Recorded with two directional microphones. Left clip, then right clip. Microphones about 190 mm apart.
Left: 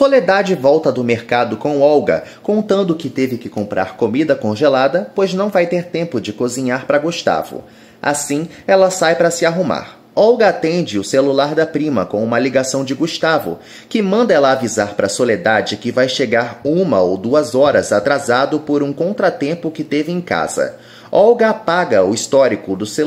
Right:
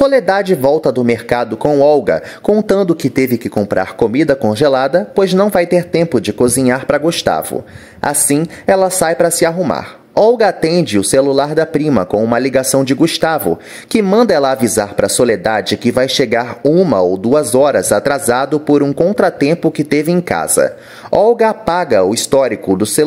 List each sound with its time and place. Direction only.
0.0 s speech: 40° right (ahead or behind)